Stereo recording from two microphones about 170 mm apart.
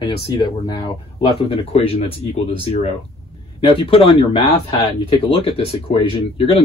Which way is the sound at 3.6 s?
30° left (ahead or behind).